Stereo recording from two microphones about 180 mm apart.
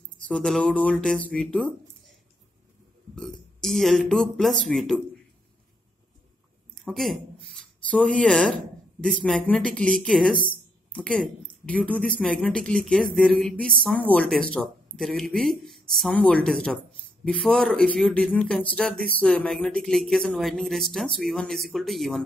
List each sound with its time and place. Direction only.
0.3 s speech: 5° left (ahead or behind)
3.2 s speech: centre (ahead or behind)
6.7 s a sound: centre (ahead or behind)
7.9 s speech: 5° left (ahead or behind)
10.3 s a woman's voice: 25° left (ahead or behind)
10.9 s speech: 5° left (ahead or behind)